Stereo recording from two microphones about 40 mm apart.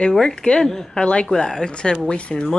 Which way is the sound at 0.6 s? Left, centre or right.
Centre.